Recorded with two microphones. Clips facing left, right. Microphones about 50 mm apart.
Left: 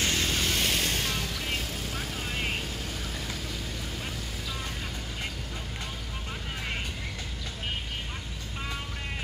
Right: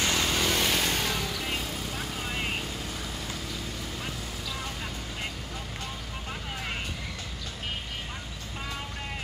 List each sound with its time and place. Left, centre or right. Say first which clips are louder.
0.1 s vehicle: right 2 dB; right
1.1 s vehicle: right 1 dB; centre